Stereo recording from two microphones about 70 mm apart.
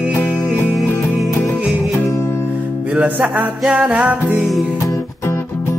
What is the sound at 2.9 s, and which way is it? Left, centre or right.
Music, centre.